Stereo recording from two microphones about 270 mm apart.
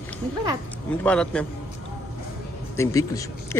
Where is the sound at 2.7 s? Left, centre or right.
Centre.